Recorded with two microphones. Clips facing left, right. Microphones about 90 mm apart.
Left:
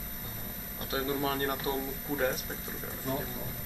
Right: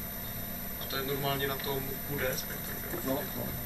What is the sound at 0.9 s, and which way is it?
Speech, 25° left (ahead or behind).